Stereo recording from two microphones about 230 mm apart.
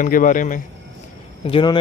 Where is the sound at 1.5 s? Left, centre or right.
Centre.